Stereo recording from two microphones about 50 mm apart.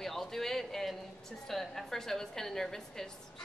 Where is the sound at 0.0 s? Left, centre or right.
Centre.